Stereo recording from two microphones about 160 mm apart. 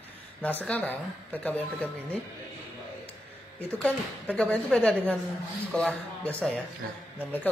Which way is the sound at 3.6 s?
10° left (ahead or behind).